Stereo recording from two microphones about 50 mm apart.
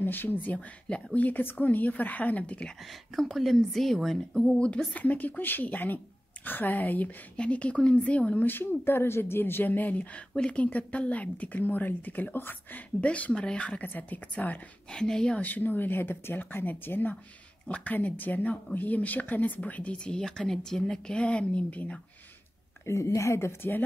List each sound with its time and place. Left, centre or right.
0.0 s speech: left
2.9 s a woman's voice: centre
4.9 s speech: left
7.3 s speech: left
8.5 s speech: left
10.3 s a woman's voice: centre
10.6 s speech: left
13.0 s speech: left
13.8 s speech: left
14.9 s a woman's voice: centre
15.4 s speech: left
22.8 s speech: left